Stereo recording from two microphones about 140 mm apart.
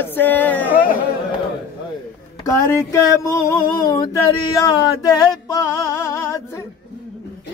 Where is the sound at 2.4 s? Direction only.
20° left (ahead or behind).